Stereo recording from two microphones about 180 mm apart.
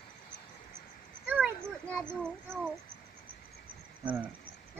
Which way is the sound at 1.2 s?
10° right (ahead or behind).